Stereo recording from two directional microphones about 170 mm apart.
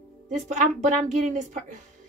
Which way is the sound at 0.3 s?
45° right (ahead or behind).